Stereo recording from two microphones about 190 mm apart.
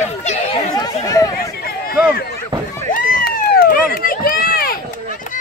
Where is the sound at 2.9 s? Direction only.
45° left (ahead or behind).